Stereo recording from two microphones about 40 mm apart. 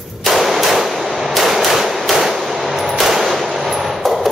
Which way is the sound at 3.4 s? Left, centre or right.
Centre.